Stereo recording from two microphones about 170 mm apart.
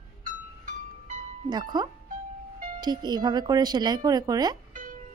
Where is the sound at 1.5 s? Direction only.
25° right (ahead or behind).